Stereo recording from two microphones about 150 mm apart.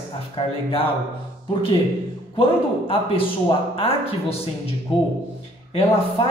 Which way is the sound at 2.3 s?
40° left (ahead or behind).